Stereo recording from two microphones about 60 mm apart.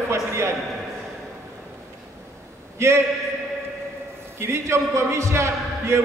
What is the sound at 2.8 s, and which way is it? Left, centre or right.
Speech, right.